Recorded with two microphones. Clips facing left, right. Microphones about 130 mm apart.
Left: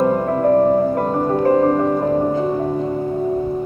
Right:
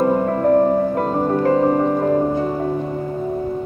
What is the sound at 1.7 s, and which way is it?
Music, centre (ahead or behind).